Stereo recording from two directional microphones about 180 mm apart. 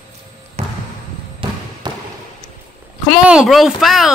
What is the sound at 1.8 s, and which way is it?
Basketball bounce, 25° right (ahead or behind).